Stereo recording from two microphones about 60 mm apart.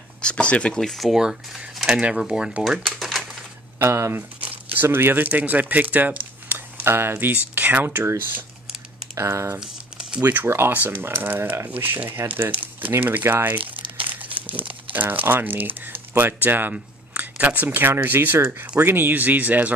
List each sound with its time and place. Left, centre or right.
0.2 s a sound: centre
0.7 s speech: centre
1.1 s speech: centre
2.8 s pigeon: centre
3.8 s speech: right
4.4 s crumpling: right
4.8 s speech: right
6.8 s speech: right
9.6 s crumpling: centre
10.2 s speech: right
16.7 s speech: right